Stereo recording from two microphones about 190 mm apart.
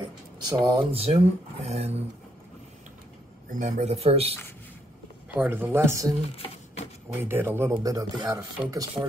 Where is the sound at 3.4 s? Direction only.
45° right (ahead or behind).